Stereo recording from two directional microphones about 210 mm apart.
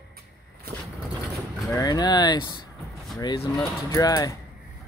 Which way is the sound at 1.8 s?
20° left (ahead or behind).